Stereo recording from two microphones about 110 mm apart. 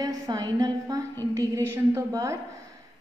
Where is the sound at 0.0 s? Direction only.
35° right (ahead or behind).